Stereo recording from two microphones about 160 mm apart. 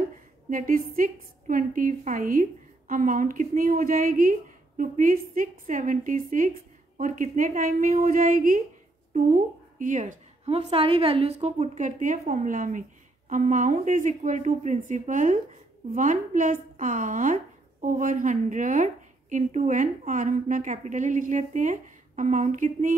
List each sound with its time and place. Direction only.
0.5 s a woman's voice: 60° right (ahead or behind)